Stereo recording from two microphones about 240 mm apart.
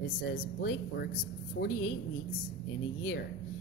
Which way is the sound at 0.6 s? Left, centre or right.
Left.